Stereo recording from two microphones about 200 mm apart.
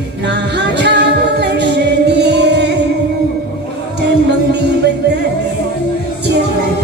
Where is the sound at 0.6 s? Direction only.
60° right (ahead or behind).